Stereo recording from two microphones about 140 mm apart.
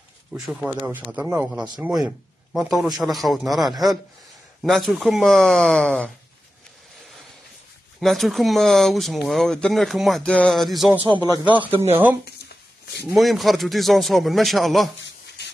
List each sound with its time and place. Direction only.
0.3 s speech: centre (ahead or behind)
2.5 s speech: centre (ahead or behind)
8.0 s speech: centre (ahead or behind)
11.7 s speech: 45° right (ahead or behind)
13.1 s speech: centre (ahead or behind)